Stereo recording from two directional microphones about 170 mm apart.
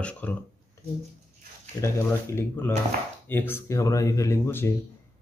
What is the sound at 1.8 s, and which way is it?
Speech, 15° left (ahead or behind).